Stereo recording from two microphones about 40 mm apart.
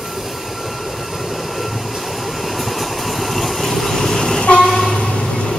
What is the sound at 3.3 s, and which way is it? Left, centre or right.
Vehicle, centre.